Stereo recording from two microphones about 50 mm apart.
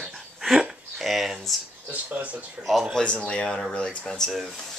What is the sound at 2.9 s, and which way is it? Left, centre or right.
Speech, left.